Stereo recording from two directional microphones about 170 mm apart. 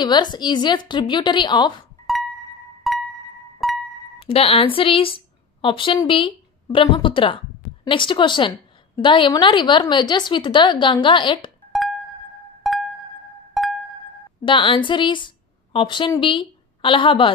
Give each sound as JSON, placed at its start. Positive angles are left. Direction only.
{"t": 0.0, "sound": "speech", "side_deg": 25}
{"t": 2.9, "sound": "music", "side_deg": 0}
{"t": 4.2, "sound": "a woman's voice", "side_deg": 35}
{"t": 12.6, "sound": "music", "side_deg": 0}
{"t": 14.4, "sound": "a woman's voice", "side_deg": 30}